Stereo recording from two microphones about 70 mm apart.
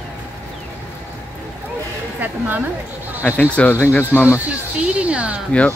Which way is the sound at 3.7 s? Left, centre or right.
Left.